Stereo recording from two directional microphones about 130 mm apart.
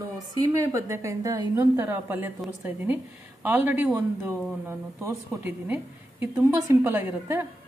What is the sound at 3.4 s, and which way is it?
A woman's voice, 15° right (ahead or behind).